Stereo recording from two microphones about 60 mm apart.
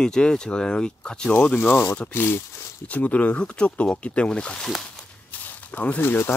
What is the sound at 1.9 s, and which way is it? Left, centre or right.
Speech, left.